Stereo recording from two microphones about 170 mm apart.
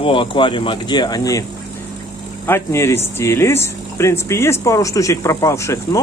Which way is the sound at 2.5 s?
15° left (ahead or behind).